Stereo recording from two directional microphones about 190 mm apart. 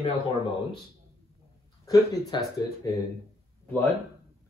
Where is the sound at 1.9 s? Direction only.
20° left (ahead or behind).